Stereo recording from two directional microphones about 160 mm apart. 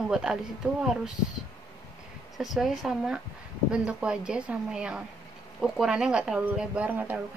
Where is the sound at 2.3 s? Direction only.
Centre (ahead or behind).